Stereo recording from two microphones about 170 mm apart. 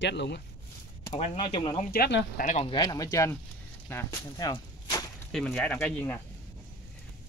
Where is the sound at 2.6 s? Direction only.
25° left (ahead or behind).